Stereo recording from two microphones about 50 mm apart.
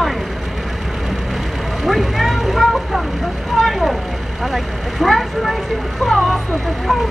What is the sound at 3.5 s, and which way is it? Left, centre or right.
Speech, centre.